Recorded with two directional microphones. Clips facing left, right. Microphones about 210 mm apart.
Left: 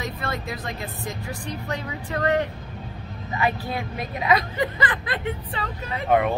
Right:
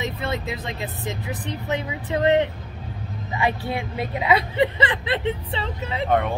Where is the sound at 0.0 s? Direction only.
20° right (ahead or behind).